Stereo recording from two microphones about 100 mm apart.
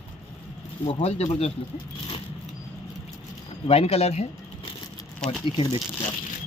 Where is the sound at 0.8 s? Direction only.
85° left.